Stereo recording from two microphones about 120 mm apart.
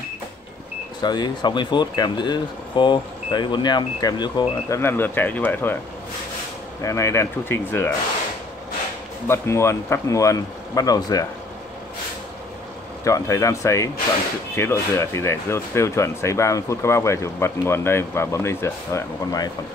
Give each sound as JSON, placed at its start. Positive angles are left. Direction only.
{"t": 1.0, "sound": "speech", "side_deg": 35}
{"t": 4.6, "sound": "speech", "side_deg": 20}
{"t": 6.8, "sound": "speech", "side_deg": 25}
{"t": 9.3, "sound": "speech", "side_deg": 25}
{"t": 13.0, "sound": "speech", "side_deg": 25}